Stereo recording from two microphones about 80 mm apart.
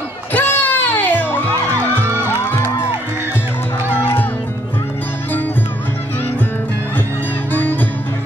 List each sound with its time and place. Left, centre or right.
0.3 s music: left
3.9 s music: left